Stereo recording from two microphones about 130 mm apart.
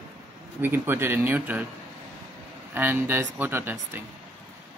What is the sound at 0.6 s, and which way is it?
Speech, 15° right (ahead or behind).